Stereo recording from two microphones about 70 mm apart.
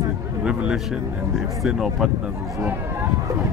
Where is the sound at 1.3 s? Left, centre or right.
Centre.